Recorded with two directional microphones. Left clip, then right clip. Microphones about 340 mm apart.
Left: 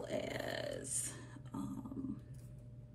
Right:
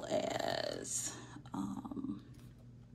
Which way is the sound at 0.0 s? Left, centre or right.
Centre.